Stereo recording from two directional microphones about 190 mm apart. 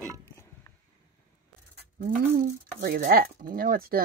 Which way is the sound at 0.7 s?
20° left (ahead or behind).